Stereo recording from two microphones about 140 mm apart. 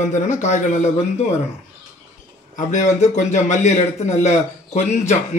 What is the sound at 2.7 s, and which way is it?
A man's voice, 60° left (ahead or behind).